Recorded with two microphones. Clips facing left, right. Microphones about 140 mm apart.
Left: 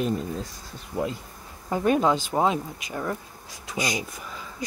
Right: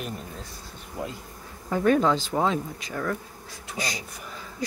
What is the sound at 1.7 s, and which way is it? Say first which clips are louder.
Speech: even; 15° left (ahead or behind).